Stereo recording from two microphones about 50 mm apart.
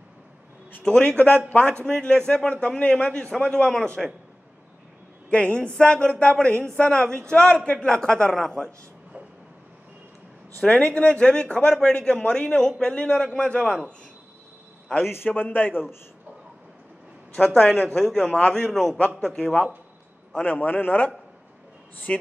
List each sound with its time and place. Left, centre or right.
0.8 s a man's voice: left
5.3 s a man's voice: left
7.7 s a man's voice: centre
10.6 s a man's voice: left
15.2 s a man's voice: left
17.6 s a man's voice: centre
18.9 s a man's voice: left
19.2 s a man's voice: centre
20.4 s a man's voice: left
22.1 s a man's voice: left